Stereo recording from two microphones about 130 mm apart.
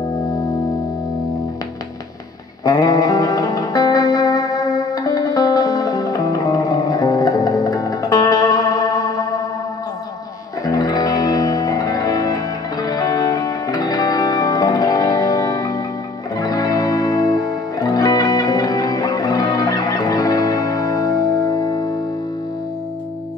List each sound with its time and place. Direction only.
2.6 s music: 25° left (ahead or behind)
10.6 s music: 30° left (ahead or behind)